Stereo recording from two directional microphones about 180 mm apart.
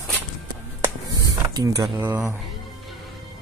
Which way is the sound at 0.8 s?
20° right (ahead or behind).